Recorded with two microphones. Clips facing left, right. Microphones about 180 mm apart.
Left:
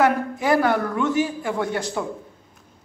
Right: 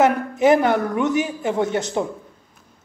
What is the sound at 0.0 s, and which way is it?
A man's voice, 20° right (ahead or behind).